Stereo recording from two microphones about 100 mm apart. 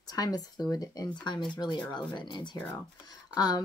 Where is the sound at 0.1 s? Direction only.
40° left (ahead or behind).